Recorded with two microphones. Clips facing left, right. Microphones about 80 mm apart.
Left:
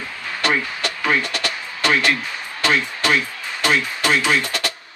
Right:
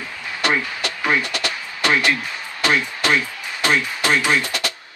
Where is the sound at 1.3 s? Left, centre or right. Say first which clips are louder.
Even; right.